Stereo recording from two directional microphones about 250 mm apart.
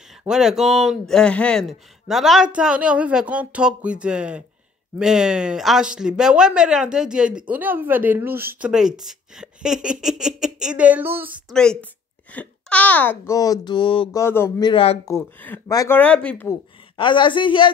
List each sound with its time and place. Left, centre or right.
0.2 s a child's voice: centre; by 15.1 s left
15.1 s a child's voice: centre
16.9 s a woman's voice: centre